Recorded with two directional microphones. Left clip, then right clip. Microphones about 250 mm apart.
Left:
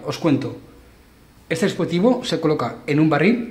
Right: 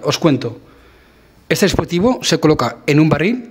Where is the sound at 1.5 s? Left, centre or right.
Right.